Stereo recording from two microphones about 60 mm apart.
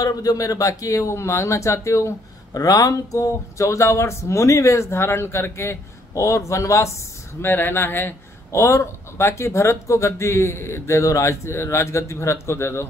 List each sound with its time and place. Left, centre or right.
0.0 s speech: left
7.4 s speech: left
8.5 s speech: left